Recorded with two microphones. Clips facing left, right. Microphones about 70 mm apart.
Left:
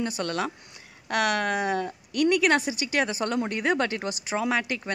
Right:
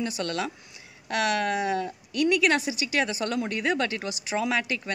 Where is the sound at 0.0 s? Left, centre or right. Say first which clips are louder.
Left 1 dB; left.